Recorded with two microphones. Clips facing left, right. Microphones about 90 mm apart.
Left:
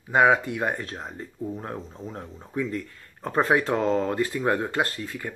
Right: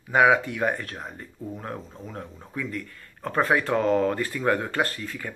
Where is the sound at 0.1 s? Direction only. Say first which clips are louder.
Even; 25° left (ahead or behind).